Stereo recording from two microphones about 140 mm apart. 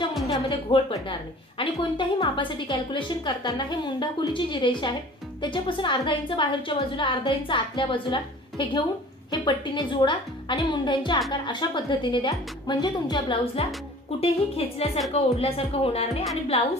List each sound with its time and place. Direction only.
0.3 s a woman's voice: 40° left (ahead or behind)
13.6 s speech: 45° left (ahead or behind)
15.1 s speech: 45° left (ahead or behind)